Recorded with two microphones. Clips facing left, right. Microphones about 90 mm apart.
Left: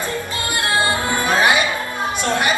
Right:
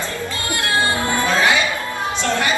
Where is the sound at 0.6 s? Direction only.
20° left (ahead or behind).